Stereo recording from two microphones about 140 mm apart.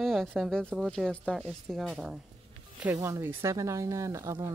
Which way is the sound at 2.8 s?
15° right (ahead or behind).